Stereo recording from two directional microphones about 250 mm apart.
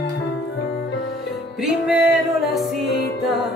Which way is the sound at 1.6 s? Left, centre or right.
Centre.